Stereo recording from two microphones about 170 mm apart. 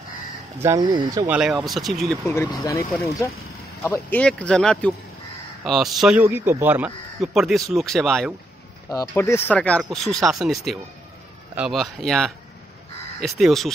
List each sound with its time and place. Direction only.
0.6 s a man's voice: 15° right (ahead or behind)
0.8 s speech: 25° right (ahead or behind)
1.2 s speech: 5° right (ahead or behind)
2.2 s a man's voice: 15° left (ahead or behind); by 8.4 s centre (ahead or behind)
8.8 s speech: 20° left (ahead or behind); by 13.7 s centre (ahead or behind)